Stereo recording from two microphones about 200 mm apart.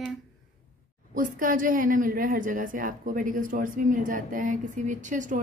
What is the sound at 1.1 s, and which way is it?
A woman's voice, 40° right (ahead or behind).